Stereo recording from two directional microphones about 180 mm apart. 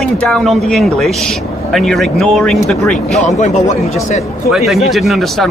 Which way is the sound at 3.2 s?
40° left (ahead or behind).